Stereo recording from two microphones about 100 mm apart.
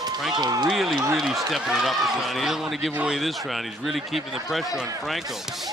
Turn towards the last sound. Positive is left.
turn(degrees=0)  # may be behind; listen again after turning